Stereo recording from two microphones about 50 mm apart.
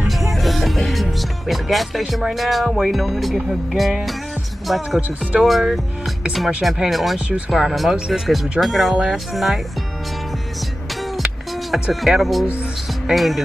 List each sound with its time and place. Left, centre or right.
0.3 s music: centre
1.5 s speech: centre
7.2 s speech: right
7.5 s speech: centre
11.7 s speech: centre